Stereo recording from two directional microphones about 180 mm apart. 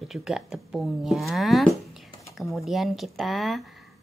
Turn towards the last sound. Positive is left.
turn(degrees=0)  # may be behind; listen again after turning